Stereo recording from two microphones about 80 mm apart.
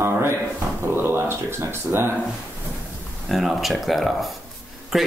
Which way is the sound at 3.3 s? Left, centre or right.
Centre.